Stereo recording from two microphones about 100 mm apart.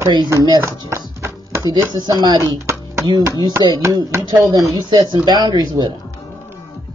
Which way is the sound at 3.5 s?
30° right (ahead or behind).